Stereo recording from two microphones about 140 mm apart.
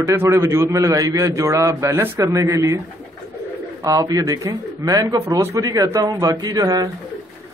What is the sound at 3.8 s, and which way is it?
A man's voice, 25° right (ahead or behind).